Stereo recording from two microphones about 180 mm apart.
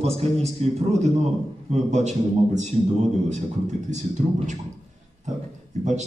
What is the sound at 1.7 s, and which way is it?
A man's voice, 40° right (ahead or behind).